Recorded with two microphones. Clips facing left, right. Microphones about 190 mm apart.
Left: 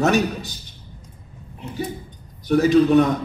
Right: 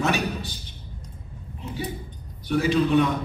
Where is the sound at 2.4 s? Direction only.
45° left (ahead or behind).